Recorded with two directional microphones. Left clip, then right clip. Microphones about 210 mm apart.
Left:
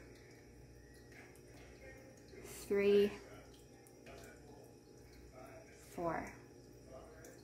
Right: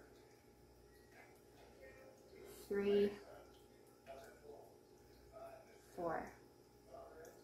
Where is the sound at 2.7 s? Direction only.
30° left (ahead or behind).